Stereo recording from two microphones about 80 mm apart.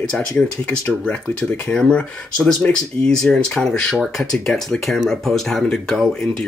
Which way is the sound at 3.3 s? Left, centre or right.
Centre.